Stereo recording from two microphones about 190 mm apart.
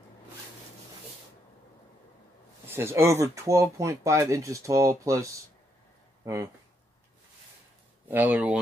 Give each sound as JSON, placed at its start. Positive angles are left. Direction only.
{"t": 2.6, "sound": "speech", "side_deg": -10}
{"t": 8.1, "sound": "speech", "side_deg": -10}